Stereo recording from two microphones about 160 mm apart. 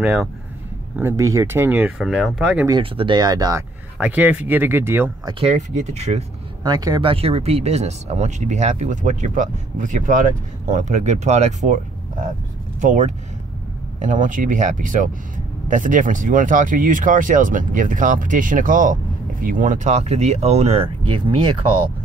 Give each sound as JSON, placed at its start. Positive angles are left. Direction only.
{"t": 0.0, "sound": "speech", "side_deg": -5}
{"t": 0.9, "sound": "speech", "side_deg": -15}
{"t": 2.8, "sound": "speech", "side_deg": -30}
{"t": 4.0, "sound": "speech", "side_deg": -10}
{"t": 5.4, "sound": "speech", "side_deg": -45}
{"t": 6.6, "sound": "speech", "side_deg": -25}
{"t": 12.8, "sound": "speech", "side_deg": -50}